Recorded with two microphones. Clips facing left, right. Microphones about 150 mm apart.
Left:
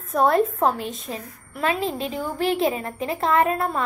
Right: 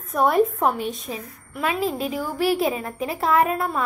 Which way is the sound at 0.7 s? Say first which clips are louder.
Right 1 dB; 10° right (ahead or behind).